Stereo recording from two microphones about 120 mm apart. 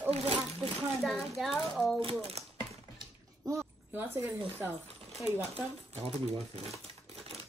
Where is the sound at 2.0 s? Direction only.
55° right (ahead or behind).